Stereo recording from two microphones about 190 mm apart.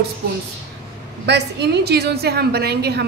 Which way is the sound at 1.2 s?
60° right (ahead or behind).